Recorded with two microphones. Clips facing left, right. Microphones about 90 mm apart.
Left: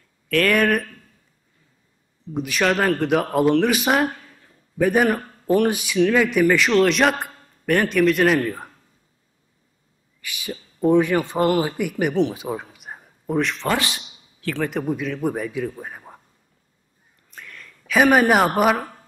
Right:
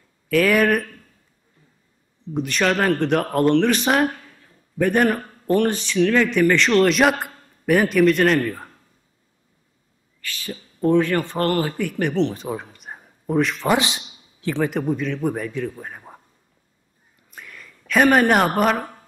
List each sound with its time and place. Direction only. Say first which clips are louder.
0.3 s a man's voice: right 1 dB; 5° right (ahead or behind)
2.3 s a man's voice: even; 5° left (ahead or behind)
8.4 s speech: right 1 dB; 15° left (ahead or behind)
10.2 s speech: even; 15° left (ahead or behind); by 13.7 s centre (ahead or behind)
13.7 s a sound: right 3 dB; 20° right (ahead or behind)
14.6 s a man's voice: right 2 dB; centre (ahead or behind)
17.3 s a sound: even; 5° right (ahead or behind)